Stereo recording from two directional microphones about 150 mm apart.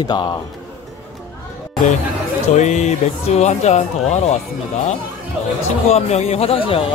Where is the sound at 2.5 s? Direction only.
50° left (ahead or behind).